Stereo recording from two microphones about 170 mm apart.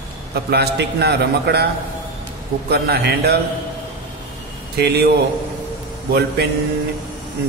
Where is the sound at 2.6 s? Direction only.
70° right (ahead or behind).